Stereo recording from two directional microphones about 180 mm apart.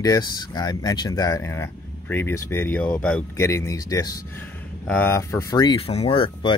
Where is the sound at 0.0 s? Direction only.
20° left (ahead or behind).